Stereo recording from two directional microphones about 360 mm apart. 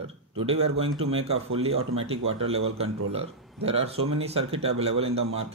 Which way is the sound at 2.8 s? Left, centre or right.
Centre.